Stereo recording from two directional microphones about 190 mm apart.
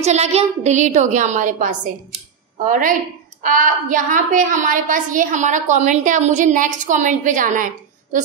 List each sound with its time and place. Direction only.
0.0 s a woman's voice: 35° right (ahead or behind)